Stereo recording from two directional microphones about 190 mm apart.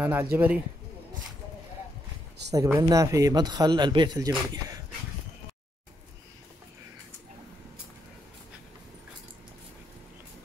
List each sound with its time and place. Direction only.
0.0 s speech: 10° right (ahead or behind)
2.5 s speech: 15° right (ahead or behind)